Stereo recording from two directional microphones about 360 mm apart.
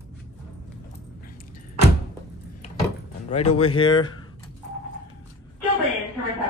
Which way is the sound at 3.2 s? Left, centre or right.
Centre.